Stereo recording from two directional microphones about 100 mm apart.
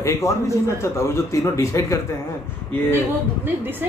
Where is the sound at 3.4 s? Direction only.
20° right (ahead or behind).